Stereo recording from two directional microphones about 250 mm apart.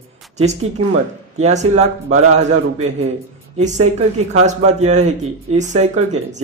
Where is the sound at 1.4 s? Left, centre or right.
Right.